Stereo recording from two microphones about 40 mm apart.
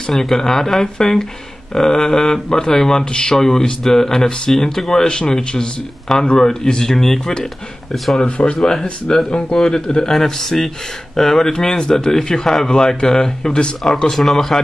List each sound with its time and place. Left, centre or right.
0.1 s speech: centre
8.2 s speech: left
14.1 s speech: centre